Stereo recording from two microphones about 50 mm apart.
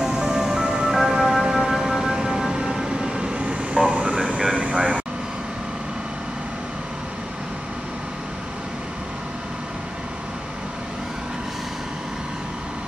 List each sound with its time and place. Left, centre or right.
0.0 s music: centre
1.4 s vehicle: centre